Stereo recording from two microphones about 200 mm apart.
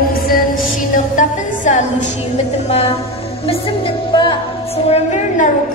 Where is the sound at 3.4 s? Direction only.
25° left (ahead or behind).